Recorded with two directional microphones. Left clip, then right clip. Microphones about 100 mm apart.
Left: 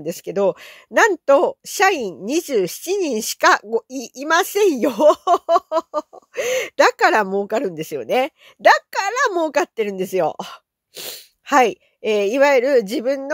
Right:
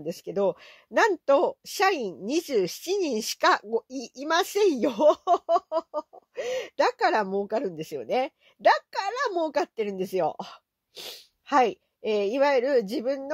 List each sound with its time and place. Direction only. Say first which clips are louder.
0.0 s a woman's voice: left 7 dB; 45° left (ahead or behind)